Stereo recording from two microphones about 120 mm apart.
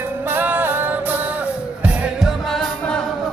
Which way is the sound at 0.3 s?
15° right (ahead or behind).